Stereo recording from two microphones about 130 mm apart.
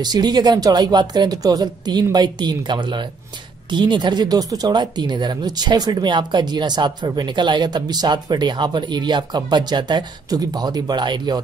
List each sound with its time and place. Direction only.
0.0 s speech: 35° right (ahead or behind)